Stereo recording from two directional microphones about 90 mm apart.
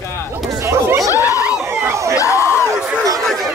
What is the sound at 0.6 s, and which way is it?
Chatter, 30° right (ahead or behind).